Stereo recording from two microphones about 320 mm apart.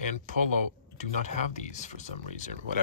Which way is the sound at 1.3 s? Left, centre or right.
Left.